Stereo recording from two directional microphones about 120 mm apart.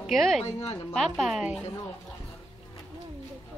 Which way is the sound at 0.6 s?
35° left (ahead or behind).